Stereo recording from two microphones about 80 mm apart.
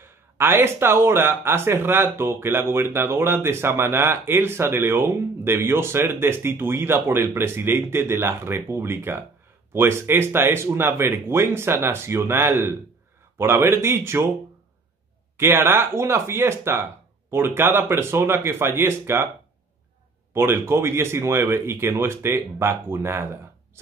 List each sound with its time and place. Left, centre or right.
0.0 s speech: right
15.3 s speech: right
20.3 s speech: right